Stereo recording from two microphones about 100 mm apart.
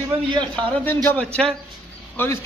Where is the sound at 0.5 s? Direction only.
20° left (ahead or behind).